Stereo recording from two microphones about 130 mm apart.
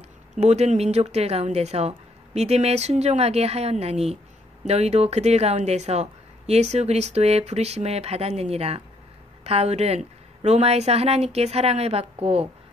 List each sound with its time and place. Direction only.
0.4 s a woman's voice: 55° right (ahead or behind)